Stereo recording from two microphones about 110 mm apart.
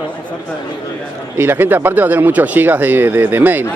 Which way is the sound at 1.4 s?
20° right (ahead or behind).